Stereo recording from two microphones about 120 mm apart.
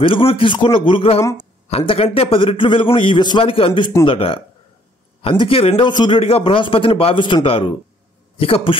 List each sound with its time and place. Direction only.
0.3 s a man's voice: 45° left (ahead or behind)